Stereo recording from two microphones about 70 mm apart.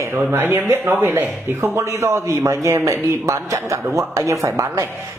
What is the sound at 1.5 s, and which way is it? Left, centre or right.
A man's voice, right.